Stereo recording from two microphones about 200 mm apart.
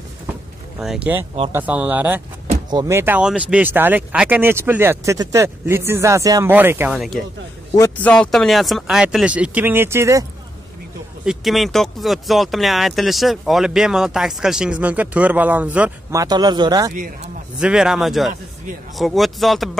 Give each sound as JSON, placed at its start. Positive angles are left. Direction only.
{"t": 0.7, "sound": "speech", "side_deg": -5}
{"t": 7.7, "sound": "a man's voice", "side_deg": 15}
{"t": 8.1, "sound": "speech", "side_deg": 5}
{"t": 11.2, "sound": "speech", "side_deg": 0}
{"t": 16.9, "sound": "speech", "side_deg": -40}
{"t": 17.6, "sound": "speech", "side_deg": -5}